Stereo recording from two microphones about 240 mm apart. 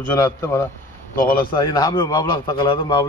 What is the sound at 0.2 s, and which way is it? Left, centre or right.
Speech, centre.